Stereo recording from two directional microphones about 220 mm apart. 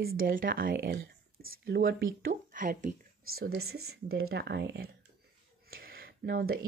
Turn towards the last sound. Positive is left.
turn(degrees=-45)  # may be behind; listen again after turning